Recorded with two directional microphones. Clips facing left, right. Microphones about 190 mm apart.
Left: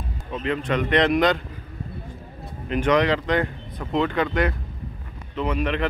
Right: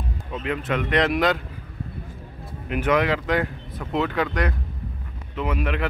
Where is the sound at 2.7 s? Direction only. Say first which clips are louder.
Left 1 dB; 5° right (ahead or behind).